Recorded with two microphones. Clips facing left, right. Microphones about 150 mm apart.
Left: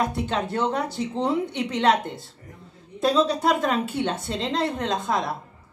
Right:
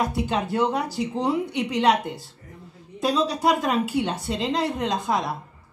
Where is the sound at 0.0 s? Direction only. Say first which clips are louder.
Right 1 dB; centre (ahead or behind).